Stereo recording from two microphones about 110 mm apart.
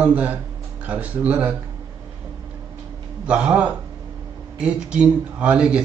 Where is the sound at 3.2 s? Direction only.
10° right (ahead or behind).